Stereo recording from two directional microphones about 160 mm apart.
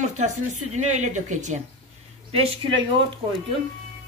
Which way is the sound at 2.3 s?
35° right (ahead or behind).